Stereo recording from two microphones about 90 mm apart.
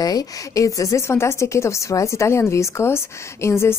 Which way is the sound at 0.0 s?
45° left (ahead or behind).